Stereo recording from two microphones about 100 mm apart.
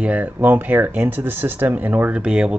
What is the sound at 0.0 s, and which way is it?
Speech, 15° right (ahead or behind).